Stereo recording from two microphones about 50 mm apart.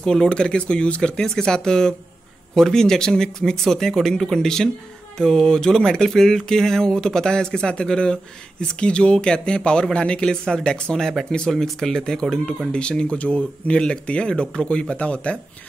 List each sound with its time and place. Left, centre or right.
0.0 s speech: centre
5.1 s a sound: centre
5.5 s speech: centre
11.5 s speech: centre; by 15.3 s left